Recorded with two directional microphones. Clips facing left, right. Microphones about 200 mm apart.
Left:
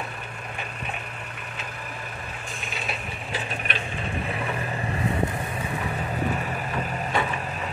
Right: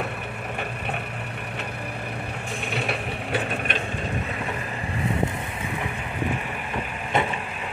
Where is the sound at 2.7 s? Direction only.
65° right (ahead or behind).